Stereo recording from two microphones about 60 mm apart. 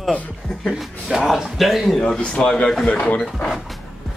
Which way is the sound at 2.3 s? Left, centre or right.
Centre.